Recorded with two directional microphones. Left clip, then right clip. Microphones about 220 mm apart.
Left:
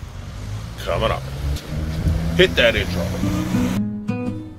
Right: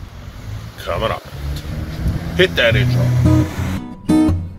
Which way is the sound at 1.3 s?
25° left (ahead or behind).